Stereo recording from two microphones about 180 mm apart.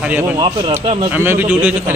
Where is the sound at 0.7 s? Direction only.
30° right (ahead or behind).